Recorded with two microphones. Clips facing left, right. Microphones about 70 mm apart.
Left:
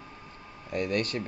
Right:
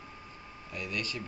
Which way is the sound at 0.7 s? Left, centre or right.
Left.